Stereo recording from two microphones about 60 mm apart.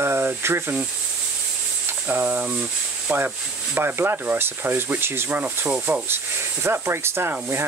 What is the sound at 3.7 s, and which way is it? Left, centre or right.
Rub, right.